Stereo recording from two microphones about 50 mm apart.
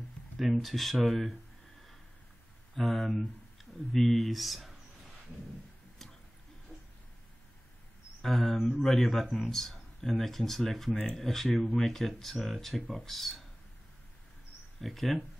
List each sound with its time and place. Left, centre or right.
0.4 s speech: centre
2.7 s speech: centre
8.2 s speech: centre
14.8 s speech: centre